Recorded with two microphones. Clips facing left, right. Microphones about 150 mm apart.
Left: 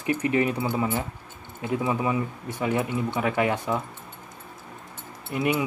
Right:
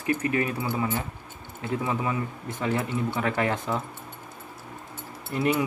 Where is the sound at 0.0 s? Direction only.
20° left (ahead or behind).